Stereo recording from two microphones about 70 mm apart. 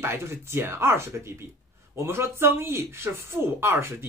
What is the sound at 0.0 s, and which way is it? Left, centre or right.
Speech, right.